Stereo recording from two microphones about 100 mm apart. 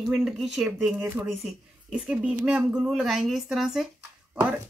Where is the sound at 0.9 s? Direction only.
15° right (ahead or behind).